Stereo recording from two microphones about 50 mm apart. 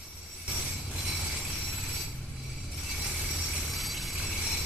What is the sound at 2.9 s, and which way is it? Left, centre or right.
Train, centre.